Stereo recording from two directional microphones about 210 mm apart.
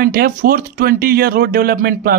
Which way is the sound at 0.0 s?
45° right (ahead or behind).